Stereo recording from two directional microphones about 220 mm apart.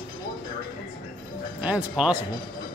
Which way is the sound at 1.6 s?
5° right (ahead or behind).